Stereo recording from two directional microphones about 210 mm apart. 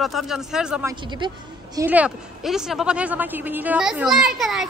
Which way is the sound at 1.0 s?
20° right (ahead or behind).